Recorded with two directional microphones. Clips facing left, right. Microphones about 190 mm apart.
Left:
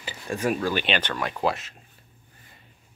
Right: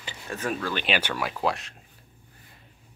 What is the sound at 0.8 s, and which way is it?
Speech, 10° right (ahead or behind).